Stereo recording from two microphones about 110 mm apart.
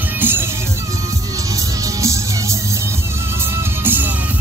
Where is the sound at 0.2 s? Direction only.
20° right (ahead or behind).